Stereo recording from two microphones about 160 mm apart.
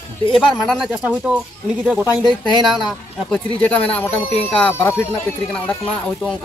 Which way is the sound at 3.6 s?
10° left (ahead or behind).